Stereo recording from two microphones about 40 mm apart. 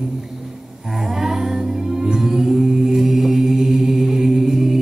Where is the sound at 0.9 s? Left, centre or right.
Centre.